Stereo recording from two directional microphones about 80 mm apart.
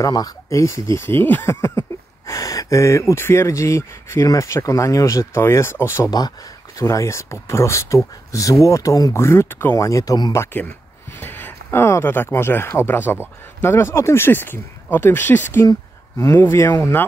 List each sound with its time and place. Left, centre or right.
0.1 s speech: left
6.0 s speech: left
6.8 s speech: left
9.1 s speech: left
9.8 s speech: left
10.3 s speech: left